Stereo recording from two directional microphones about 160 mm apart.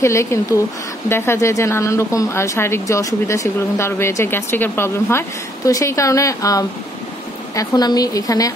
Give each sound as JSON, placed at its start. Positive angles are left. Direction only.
{"t": 0.0, "sound": "a woman's voice", "side_deg": 20}